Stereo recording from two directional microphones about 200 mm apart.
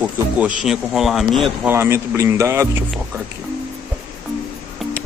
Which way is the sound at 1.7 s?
10° right (ahead or behind).